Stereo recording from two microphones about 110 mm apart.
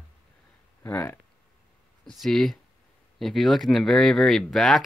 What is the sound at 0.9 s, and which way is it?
Speech, 20° left (ahead or behind).